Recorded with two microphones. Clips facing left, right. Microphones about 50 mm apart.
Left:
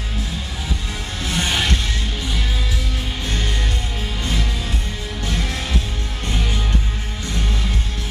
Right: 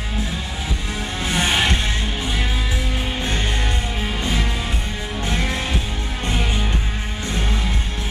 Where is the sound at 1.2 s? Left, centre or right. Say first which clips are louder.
Right 2 dB; right.